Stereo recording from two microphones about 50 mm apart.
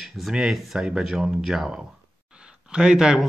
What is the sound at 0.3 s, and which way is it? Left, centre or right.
Speech, centre.